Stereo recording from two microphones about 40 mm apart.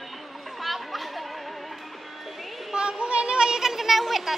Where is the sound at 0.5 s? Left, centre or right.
Centre.